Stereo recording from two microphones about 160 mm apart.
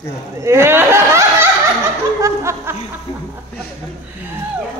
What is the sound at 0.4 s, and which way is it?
Speech, 15° right (ahead or behind).